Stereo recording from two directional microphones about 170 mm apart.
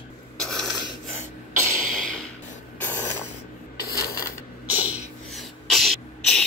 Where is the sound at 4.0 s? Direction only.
20° left (ahead or behind).